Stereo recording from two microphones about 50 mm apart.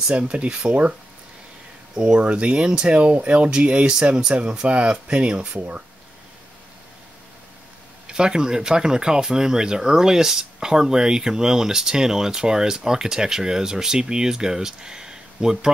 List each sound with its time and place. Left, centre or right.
0.1 s speech: right
2.0 s speech: right
8.1 s speech: centre